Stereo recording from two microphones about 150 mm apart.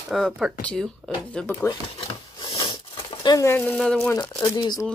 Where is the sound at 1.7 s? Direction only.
35° left (ahead or behind); by 4.1 s 5° left (ahead or behind).